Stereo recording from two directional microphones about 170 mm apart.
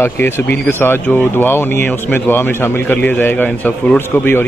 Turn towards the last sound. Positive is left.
turn(degrees=10)  # may be behind; listen again after turning